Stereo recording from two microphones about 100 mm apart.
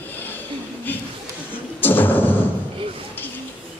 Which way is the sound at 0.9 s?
20° left (ahead or behind).